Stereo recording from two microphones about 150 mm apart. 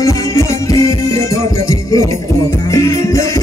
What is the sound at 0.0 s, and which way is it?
Music, 20° left (ahead or behind).